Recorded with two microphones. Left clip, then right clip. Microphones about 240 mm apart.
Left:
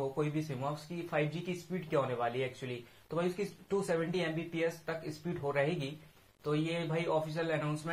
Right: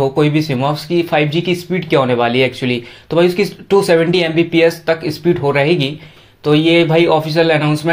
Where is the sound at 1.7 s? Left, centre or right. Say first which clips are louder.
Right 19 dB; right.